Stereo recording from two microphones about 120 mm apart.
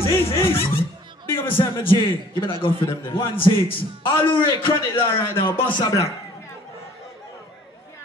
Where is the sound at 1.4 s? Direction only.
45° left (ahead or behind).